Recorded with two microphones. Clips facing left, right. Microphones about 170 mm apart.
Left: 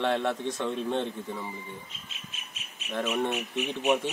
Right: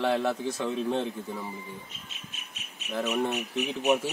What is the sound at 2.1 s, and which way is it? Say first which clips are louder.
Bird: even; 40° right (ahead or behind).